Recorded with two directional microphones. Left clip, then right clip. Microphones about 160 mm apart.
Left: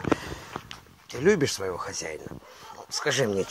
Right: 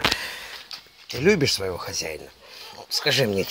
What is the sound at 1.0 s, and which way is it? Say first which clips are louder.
Speech: right 3 dB; 25° right (ahead or behind).